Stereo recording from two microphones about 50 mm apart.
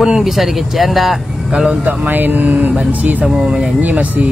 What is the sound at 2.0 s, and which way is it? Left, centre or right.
Speech, right.